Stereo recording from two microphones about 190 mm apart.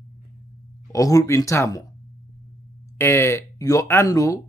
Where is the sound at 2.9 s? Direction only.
15° left (ahead or behind).